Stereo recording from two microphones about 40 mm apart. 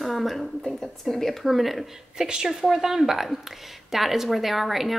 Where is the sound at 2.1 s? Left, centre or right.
Centre.